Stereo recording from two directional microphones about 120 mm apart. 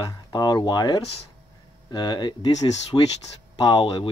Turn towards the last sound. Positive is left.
turn(degrees=45)  # may be behind; listen again after turning